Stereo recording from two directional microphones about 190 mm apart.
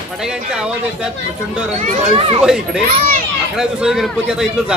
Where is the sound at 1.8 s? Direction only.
35° right (ahead or behind).